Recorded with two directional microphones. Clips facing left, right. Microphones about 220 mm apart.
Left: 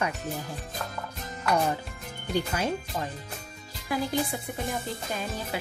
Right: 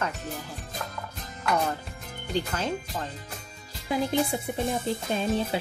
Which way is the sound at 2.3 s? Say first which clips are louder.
Left 1 dB; 10° left (ahead or behind).